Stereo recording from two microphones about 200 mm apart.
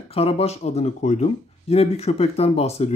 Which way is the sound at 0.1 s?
30° left (ahead or behind).